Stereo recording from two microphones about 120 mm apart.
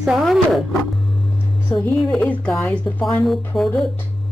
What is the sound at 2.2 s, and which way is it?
A man's voice, 10° left (ahead or behind).